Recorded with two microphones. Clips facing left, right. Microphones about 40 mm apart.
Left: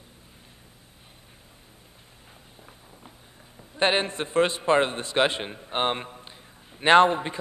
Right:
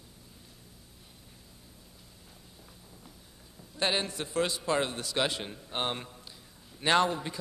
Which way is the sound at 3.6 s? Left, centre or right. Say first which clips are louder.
Left 7 dB; left.